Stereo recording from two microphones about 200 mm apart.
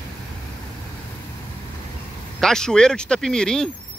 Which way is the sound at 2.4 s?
5° left (ahead or behind).